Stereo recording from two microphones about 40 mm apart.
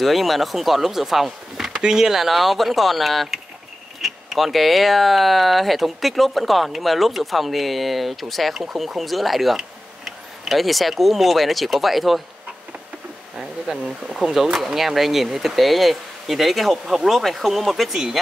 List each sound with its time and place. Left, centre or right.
0.0 s speech: centre
13.4 s speech: centre